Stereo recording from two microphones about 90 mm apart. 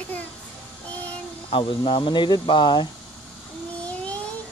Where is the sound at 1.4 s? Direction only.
80° left; by 2.8 s 60° left (ahead or behind).